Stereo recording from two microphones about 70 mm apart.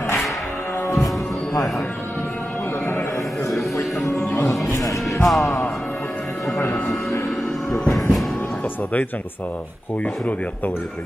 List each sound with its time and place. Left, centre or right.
4.1 s music: centre
4.4 s music: left
4.7 s music: left
5.2 s music: centre
6.6 s music: left
7.7 s train: centre